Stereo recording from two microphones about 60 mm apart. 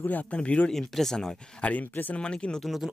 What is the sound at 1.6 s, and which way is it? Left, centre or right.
Speech, left.